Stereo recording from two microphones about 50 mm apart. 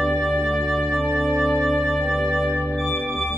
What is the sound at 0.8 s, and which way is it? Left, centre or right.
Music, centre.